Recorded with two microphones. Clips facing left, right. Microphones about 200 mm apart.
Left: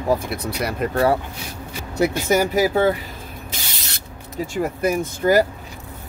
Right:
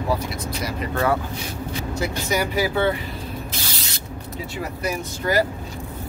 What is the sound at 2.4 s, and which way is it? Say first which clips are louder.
Speech: left 2 dB; 45° left (ahead or behind).